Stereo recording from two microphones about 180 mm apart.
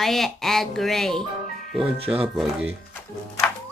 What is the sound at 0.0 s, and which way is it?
Speech, centre (ahead or behind).